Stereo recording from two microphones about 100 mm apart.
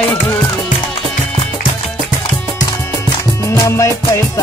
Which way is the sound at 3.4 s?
30° left (ahead or behind).